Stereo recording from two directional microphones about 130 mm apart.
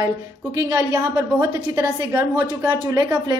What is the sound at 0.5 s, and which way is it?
A woman's voice, 25° right (ahead or behind).